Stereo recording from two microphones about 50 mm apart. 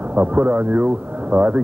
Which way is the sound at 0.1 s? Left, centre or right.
Right.